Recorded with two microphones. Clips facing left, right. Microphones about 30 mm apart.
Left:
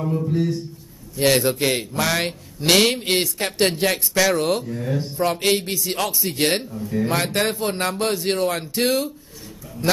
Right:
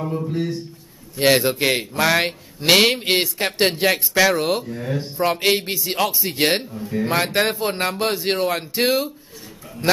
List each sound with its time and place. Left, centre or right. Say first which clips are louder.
0.0 s speech: left 2 dB; centre